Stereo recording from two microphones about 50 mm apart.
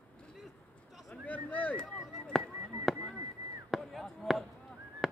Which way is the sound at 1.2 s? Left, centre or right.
Left.